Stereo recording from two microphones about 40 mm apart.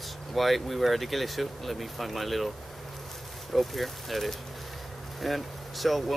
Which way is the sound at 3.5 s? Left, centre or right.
Centre.